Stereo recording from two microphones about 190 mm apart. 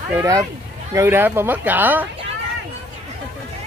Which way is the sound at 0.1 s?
15° right (ahead or behind).